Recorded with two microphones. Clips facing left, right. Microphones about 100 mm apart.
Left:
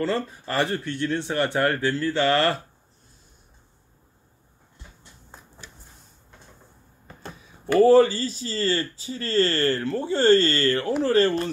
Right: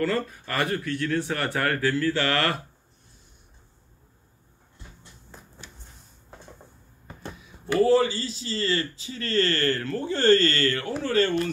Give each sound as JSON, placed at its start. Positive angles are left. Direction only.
{"t": 0.0, "sound": "speech", "side_deg": 25}
{"t": 7.6, "sound": "speech", "side_deg": 40}